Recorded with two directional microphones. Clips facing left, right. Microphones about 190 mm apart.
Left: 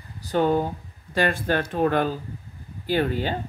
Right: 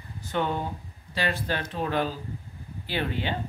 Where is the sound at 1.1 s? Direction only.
50° left (ahead or behind).